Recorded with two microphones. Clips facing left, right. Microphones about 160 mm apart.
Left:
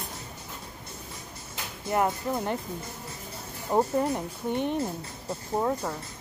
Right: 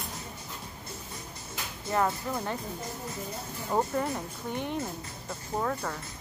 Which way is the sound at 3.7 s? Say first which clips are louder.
Left 4 dB; 20° left (ahead or behind).